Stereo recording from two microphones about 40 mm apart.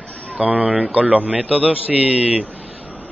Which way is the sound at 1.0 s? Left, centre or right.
Right.